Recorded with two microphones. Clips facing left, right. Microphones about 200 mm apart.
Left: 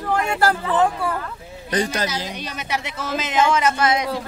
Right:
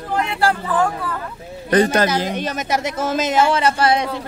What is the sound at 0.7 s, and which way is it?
Speech, 20° left (ahead or behind).